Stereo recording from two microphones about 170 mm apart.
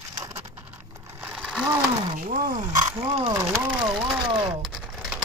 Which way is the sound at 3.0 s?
35° right (ahead or behind).